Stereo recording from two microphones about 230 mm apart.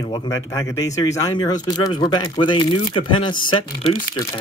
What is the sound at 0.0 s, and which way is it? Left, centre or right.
A man's voice, centre.